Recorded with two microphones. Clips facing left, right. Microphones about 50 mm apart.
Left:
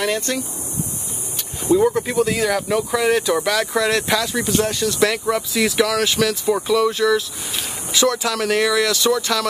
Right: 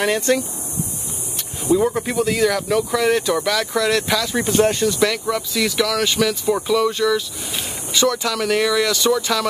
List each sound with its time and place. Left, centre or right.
0.0 s speech: centre
1.6 s speech: centre
4.4 s speech: centre
4.8 s speech: centre
5.1 s speech: centre